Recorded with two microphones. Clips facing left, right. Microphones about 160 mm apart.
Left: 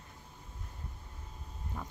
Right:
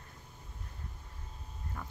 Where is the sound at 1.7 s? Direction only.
15° left (ahead or behind).